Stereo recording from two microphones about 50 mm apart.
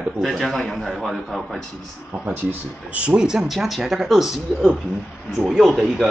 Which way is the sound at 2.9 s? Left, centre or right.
Right.